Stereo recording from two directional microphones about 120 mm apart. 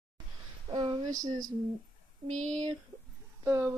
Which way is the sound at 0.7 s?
40° right (ahead or behind).